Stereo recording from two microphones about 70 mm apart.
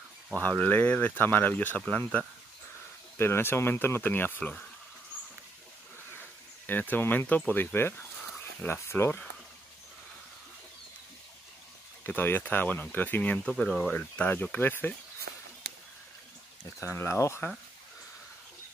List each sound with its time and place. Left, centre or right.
0.4 s speech: left
6.6 s speech: left
12.0 s speech: left
13.5 s speech: centre
13.9 s speech: left
16.8 s speech: left